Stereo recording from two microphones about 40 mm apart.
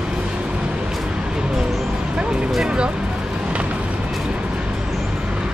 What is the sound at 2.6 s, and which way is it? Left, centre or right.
Speech, right.